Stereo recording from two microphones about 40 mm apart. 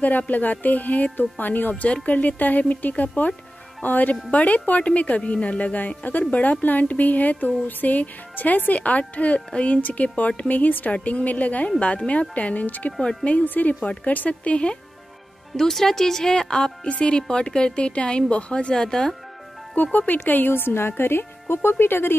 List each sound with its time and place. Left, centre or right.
0.3 s a woman's voice: left
9.8 s speech: left
10.5 s speech: left
15.5 s a woman's voice: centre
19.7 s speech: left
21.6 s speech: left